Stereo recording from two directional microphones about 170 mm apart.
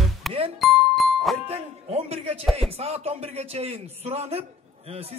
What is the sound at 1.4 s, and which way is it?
Speech, 35° right (ahead or behind).